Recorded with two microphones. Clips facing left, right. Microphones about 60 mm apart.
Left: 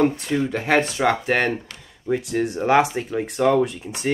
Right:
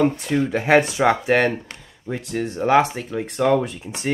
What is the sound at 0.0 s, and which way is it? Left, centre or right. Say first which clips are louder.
Speech: right 1 dB; centre.